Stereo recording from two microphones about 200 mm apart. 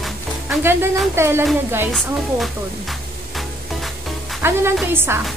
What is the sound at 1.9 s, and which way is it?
Speech, centre (ahead or behind).